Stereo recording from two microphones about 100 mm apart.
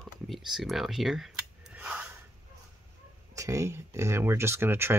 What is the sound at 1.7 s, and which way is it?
Gasp, 15° right (ahead or behind).